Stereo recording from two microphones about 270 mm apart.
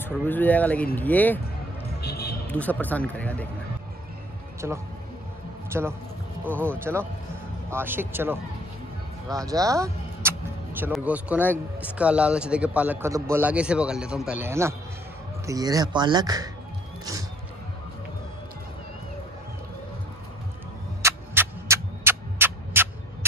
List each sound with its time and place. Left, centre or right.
0.0 s a man's voice: centre
2.0 s music: left
2.4 s a man's voice: centre
4.6 s a man's voice: centre
21.0 s a sound: centre